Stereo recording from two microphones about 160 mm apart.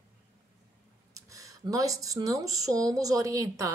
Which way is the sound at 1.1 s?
20° right (ahead or behind).